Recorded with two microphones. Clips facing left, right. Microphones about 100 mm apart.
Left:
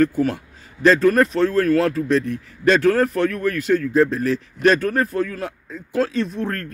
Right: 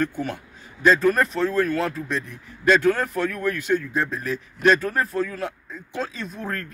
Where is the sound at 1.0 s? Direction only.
20° right (ahead or behind).